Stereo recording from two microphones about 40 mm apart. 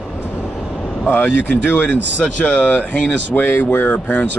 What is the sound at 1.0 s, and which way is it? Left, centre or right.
Speech, left.